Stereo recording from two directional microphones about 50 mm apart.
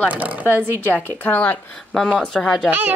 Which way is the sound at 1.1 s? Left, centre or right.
Left.